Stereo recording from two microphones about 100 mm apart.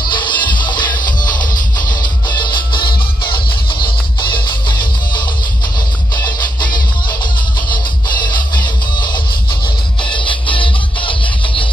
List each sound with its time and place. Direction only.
0.0 s music: 50° left (ahead or behind)
6.2 s music: 50° left (ahead or behind)